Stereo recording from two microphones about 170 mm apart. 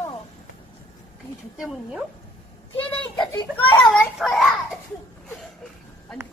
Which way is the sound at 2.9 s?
5° left (ahead or behind).